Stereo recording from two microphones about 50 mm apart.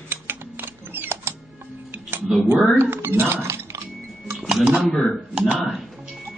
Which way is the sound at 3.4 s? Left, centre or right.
Right.